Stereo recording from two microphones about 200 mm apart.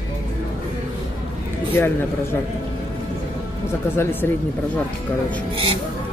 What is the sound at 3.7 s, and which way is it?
Speech, 10° left (ahead or behind).